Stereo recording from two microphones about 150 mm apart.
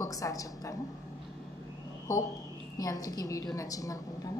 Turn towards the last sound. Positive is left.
turn(degrees=25)  # may be behind; listen again after turning